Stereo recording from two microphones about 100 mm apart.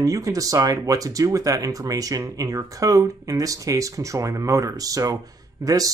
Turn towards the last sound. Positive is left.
turn(degrees=-35)  # may be behind; listen again after turning